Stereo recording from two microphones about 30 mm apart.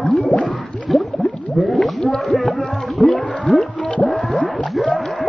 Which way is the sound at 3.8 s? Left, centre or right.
Left.